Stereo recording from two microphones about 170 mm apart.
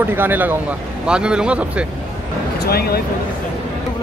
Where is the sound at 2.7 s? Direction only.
65° left (ahead or behind).